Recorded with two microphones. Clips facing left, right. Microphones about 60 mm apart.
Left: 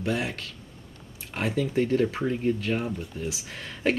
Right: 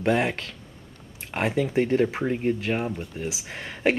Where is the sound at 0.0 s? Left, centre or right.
Right.